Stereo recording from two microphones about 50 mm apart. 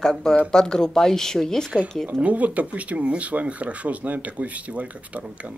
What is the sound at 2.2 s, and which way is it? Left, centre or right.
Speech, right.